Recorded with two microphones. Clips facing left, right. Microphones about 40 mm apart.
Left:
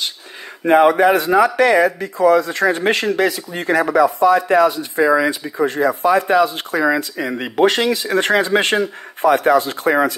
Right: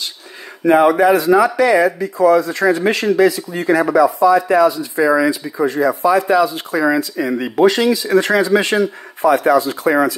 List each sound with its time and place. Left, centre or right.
0.7 s speech: left